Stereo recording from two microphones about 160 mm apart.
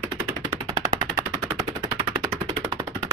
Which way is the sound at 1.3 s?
25° right (ahead or behind).